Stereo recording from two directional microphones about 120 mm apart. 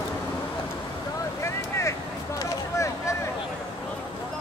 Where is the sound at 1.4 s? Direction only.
25° left (ahead or behind).